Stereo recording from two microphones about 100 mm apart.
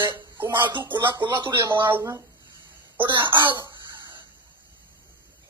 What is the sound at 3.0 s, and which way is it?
Cough, 50° right (ahead or behind).